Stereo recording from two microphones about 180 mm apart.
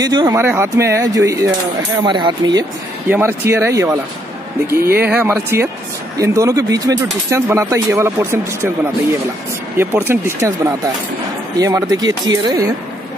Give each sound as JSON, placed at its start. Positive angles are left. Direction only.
{"t": 0.0, "sound": "speech", "side_deg": -20}
{"t": 3.1, "sound": "speech", "side_deg": -15}
{"t": 4.6, "sound": "speech", "side_deg": -60}
{"t": 5.0, "sound": "speech", "side_deg": -10}
{"t": 9.8, "sound": "speech", "side_deg": -15}